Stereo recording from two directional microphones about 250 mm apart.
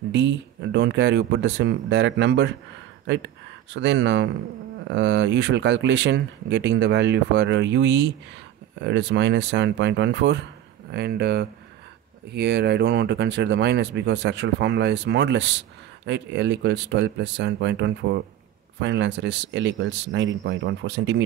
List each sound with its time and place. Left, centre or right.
0.1 s speech: right